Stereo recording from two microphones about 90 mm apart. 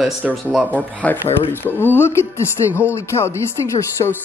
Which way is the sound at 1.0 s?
15° left (ahead or behind).